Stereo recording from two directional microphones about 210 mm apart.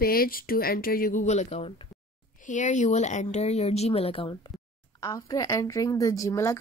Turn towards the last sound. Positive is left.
turn(degrees=15)  # may be behind; listen again after turning